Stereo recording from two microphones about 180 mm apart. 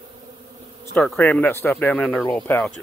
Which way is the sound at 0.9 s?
10° left (ahead or behind).